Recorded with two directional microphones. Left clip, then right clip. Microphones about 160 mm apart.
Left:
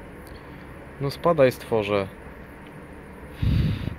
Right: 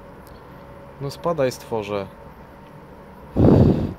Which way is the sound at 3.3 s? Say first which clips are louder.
Right 16 dB; centre (ahead or behind).